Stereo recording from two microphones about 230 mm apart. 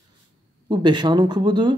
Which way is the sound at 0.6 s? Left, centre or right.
Centre.